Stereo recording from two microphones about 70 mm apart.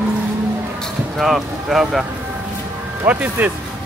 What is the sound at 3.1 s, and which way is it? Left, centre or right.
Speech, right.